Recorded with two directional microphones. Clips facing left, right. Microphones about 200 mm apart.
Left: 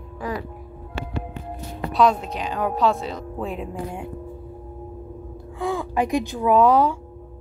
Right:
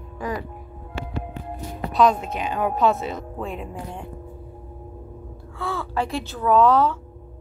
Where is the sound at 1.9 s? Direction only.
Centre (ahead or behind).